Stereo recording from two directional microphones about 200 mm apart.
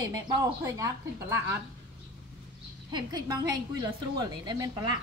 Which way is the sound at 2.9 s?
20° right (ahead or behind).